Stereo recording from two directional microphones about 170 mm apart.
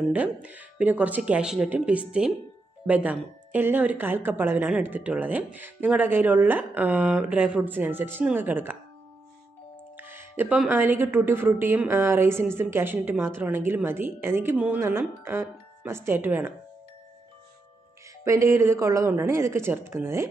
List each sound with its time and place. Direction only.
0.1 s speech: 10° right (ahead or behind)
9.9 s speech: 10° right (ahead or behind)
18.2 s speech: 15° right (ahead or behind)